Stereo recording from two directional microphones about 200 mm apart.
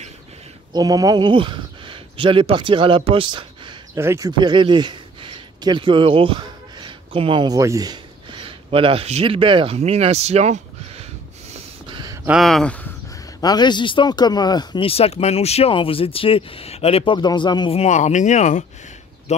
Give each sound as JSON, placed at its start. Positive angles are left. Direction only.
{"t": 0.7, "sound": "speech", "side_deg": -20}
{"t": 11.5, "sound": "snort", "side_deg": -20}
{"t": 12.3, "sound": "speech", "side_deg": 0}
{"t": 13.4, "sound": "speech", "side_deg": 20}